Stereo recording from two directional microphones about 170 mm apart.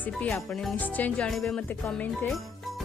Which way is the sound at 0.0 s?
5° left (ahead or behind).